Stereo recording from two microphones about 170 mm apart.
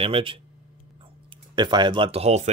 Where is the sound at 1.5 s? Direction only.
25° right (ahead or behind).